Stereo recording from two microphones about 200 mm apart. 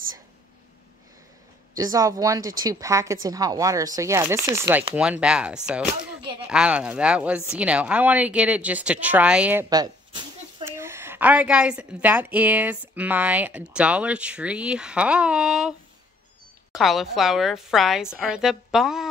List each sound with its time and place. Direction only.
1.8 s a woman's voice: 15° right (ahead or behind)
16.7 s a woman's voice: centre (ahead or behind)